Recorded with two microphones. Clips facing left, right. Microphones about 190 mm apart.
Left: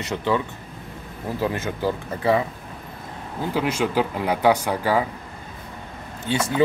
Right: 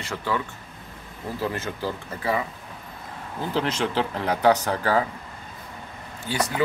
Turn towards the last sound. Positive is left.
turn(degrees=25)  # may be behind; listen again after turning